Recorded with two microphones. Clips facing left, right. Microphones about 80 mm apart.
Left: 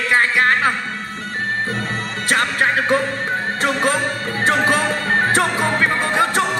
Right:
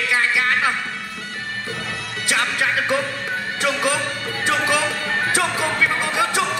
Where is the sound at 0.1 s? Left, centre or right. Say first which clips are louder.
Left 5 dB; left.